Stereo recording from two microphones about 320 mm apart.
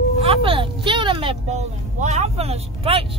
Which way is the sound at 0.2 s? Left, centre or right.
Centre.